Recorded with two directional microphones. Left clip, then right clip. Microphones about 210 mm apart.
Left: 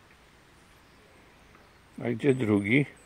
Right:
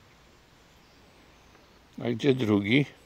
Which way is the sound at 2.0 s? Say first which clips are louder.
Right 1 dB; 10° right (ahead or behind).